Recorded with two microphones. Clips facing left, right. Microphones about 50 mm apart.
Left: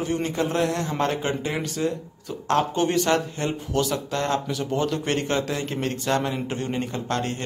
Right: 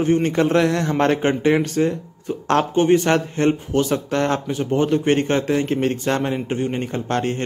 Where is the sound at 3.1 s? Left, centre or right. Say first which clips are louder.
Right 5 dB; right.